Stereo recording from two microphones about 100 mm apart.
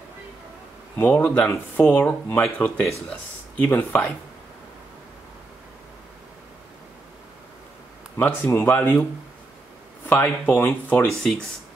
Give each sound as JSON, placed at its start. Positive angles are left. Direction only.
{"t": 1.0, "sound": "speech", "side_deg": 15}
{"t": 8.2, "sound": "speech", "side_deg": 20}
{"t": 10.0, "sound": "speech", "side_deg": 15}
{"t": 11.1, "sound": "speech", "side_deg": 0}